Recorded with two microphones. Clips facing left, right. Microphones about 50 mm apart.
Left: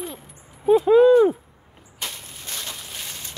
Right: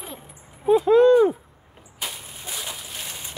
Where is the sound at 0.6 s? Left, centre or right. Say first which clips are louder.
Left 1 dB; centre.